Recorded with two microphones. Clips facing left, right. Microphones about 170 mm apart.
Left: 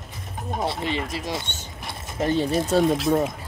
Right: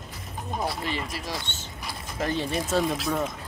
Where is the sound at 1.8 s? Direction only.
Centre (ahead or behind).